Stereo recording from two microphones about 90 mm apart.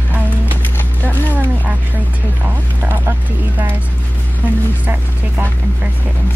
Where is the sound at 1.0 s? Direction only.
20° left (ahead or behind).